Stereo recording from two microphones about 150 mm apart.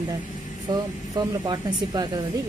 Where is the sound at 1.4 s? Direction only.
25° right (ahead or behind).